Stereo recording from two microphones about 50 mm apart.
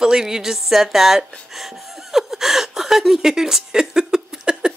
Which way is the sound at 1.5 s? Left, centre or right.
Centre.